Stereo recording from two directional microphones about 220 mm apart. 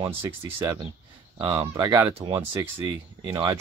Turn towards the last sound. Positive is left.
turn(degrees=-15)  # may be behind; listen again after turning